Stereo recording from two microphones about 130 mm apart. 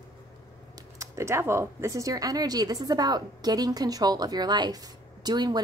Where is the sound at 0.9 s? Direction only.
20° right (ahead or behind).